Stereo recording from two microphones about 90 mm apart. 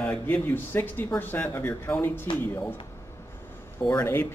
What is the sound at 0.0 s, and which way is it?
Speech, 20° left (ahead or behind).